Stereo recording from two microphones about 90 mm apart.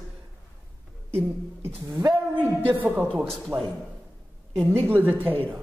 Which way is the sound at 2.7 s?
20° right (ahead or behind).